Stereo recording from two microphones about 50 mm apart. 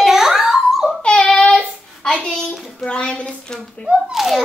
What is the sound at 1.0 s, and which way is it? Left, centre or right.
Child singing, left.